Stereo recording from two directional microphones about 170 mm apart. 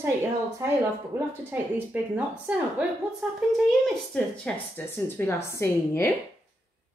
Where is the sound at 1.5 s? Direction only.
15° right (ahead or behind); by 6.1 s 15° left (ahead or behind).